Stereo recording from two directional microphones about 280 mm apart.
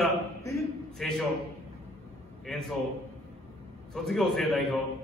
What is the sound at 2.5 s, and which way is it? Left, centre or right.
Speech, centre.